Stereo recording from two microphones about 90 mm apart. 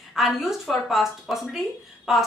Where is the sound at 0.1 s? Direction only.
5° right (ahead or behind).